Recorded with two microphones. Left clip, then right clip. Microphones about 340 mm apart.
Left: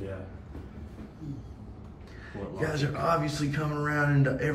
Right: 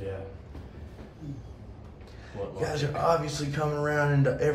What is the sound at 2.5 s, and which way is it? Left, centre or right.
A man's voice, centre.